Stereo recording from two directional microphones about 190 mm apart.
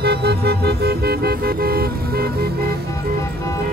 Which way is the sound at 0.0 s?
60° right (ahead or behind).